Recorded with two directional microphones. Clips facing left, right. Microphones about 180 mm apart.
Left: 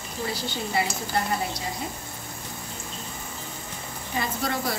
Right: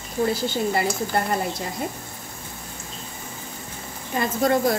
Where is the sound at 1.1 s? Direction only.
55° right (ahead or behind).